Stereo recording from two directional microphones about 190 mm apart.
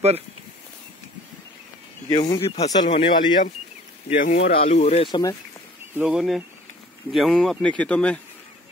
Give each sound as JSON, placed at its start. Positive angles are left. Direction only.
{"t": 2.0, "sound": "speech", "side_deg": 20}
{"t": 2.9, "sound": "speech", "side_deg": 35}
{"t": 5.9, "sound": "speech", "side_deg": -5}